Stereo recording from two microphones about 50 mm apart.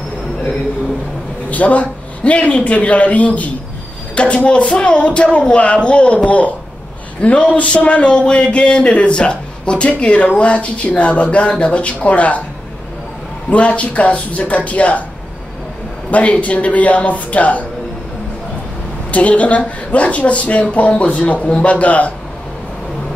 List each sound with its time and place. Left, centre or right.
1.5 s a man's voice: left
13.5 s speech: left
16.1 s speech: left
19.1 s speech: left